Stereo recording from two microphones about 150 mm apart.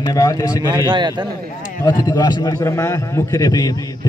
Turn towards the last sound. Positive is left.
turn(degrees=25)  # may be behind; listen again after turning